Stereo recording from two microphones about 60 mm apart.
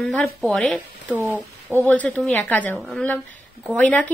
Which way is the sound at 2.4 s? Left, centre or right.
Left.